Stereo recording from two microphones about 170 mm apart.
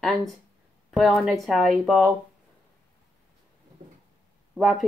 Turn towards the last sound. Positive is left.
turn(degrees=0)  # may be behind; listen again after turning